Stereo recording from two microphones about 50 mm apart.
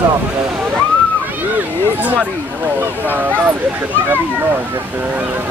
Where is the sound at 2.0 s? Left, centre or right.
Right.